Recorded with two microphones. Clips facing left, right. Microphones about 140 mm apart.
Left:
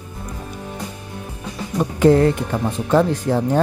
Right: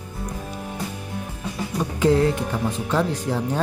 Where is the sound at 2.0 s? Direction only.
55° left (ahead or behind).